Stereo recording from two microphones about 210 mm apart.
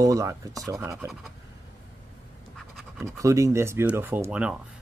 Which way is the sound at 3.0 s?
15° right (ahead or behind).